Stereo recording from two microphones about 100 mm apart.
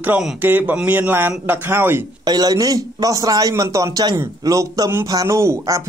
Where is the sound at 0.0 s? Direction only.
20° right (ahead or behind).